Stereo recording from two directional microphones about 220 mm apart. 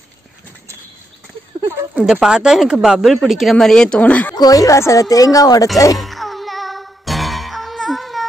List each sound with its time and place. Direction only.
1.8 s a woman's voice: 5° right (ahead or behind); by 5.7 s 15° left (ahead or behind)
5.9 s music: centre (ahead or behind)